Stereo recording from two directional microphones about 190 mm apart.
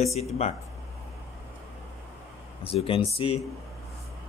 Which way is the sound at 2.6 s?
30° left (ahead or behind).